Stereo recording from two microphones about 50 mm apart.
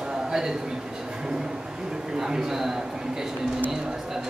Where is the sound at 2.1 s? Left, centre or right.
Centre.